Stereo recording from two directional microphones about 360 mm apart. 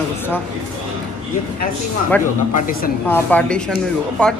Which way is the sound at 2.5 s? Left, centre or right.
Left.